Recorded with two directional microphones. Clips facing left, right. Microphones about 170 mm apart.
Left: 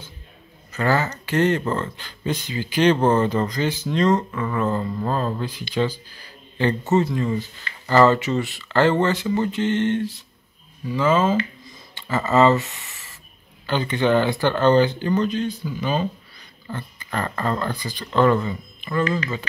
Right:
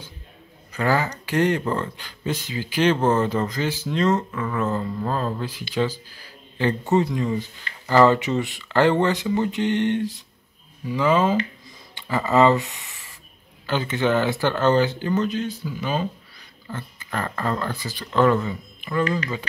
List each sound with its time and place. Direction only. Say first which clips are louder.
0.7 s speech: left 1 dB; 10° right (ahead or behind)